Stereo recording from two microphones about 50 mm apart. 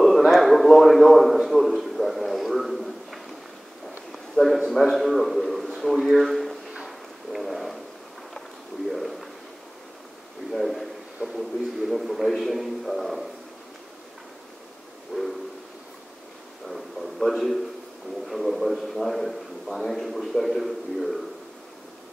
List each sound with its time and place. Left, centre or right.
0.3 s a man's voice: centre
6.8 s a sound: centre
10.5 s a man's voice: centre
15.1 s train: right
16.6 s a sound: centre
18.2 s a man's voice: centre